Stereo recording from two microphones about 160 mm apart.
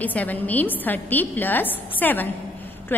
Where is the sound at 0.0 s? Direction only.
10° left (ahead or behind).